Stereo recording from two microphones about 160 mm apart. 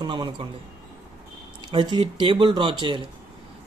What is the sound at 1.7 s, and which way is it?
Speech, 30° right (ahead or behind).